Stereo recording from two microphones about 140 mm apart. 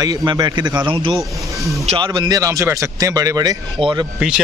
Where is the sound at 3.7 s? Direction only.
35° right (ahead or behind).